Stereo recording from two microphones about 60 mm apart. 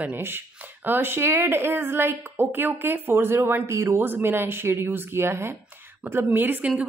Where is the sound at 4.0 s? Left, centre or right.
Right.